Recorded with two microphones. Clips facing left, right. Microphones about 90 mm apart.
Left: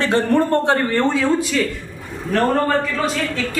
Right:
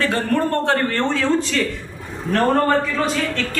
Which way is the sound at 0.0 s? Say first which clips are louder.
Left 3 dB; 20° left (ahead or behind).